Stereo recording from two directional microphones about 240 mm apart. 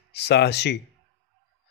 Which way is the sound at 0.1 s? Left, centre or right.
Left.